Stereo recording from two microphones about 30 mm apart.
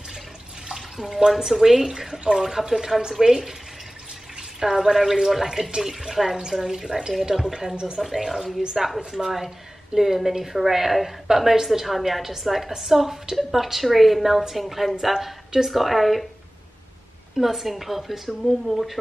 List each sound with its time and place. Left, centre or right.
0.7 s bathtub: centre
1.4 s a woman's voice: centre
3.0 s speech: right
4.6 s a woman's voice: centre
7.7 s speech: right
8.0 s a woman's voice: centre
17.4 s a woman's voice: centre